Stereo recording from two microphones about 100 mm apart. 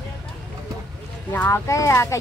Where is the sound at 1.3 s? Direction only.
25° left (ahead or behind).